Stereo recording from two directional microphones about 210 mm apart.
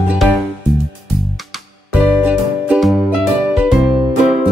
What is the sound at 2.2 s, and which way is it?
Music, 5° right (ahead or behind).